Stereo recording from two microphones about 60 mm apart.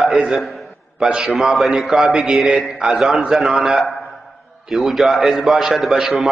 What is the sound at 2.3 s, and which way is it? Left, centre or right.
A man's voice, centre.